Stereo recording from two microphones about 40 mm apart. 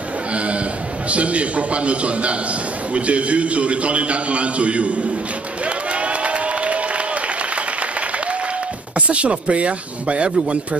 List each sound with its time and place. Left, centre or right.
0.3 s a sound: right
1.1 s a man's voice: right
5.9 s crowd: right
8.9 s a man's voice: right